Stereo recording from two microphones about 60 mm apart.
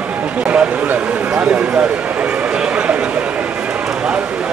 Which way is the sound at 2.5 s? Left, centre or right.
Centre.